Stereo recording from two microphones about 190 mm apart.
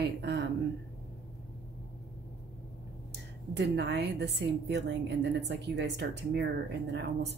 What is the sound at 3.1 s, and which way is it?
A woman's voice, 65° right (ahead or behind).